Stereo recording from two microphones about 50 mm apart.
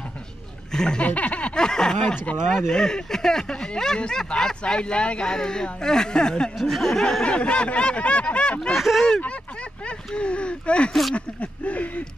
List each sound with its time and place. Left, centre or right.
0.7 s speech: centre
1.0 s speech: left
1.5 s speech: centre
7.2 s speech: left
8.7 s speech: centre
9.8 s speech: left
10.9 s speech: centre
11.1 s speech: left